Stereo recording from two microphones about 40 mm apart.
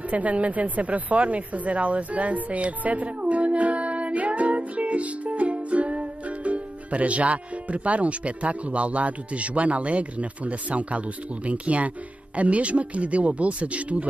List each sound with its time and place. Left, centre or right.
0.1 s speech: right